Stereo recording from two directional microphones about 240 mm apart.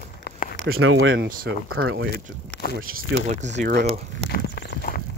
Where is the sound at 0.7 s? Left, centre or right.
Right.